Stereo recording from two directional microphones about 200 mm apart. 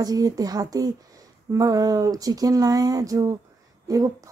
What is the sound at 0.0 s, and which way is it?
A woman's voice, 20° right (ahead or behind).